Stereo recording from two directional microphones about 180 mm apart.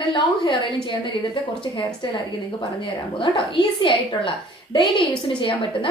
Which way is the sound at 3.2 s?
30° left (ahead or behind).